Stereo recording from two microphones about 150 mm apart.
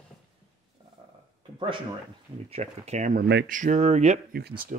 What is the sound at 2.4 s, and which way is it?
Speech, 45° right (ahead or behind).